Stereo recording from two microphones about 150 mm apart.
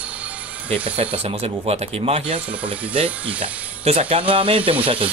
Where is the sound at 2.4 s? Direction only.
10° right (ahead or behind).